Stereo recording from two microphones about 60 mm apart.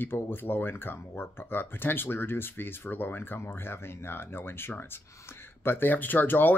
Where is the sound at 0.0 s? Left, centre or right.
Left.